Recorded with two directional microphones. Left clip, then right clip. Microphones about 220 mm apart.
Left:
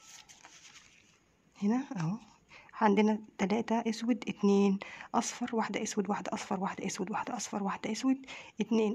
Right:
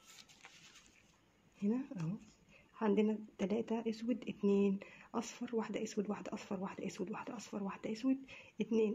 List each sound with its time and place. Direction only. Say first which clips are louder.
1.6 s speech: left 6 dB; 35° left (ahead or behind)